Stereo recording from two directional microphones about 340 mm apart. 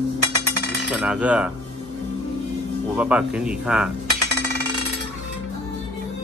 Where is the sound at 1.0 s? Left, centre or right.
Centre.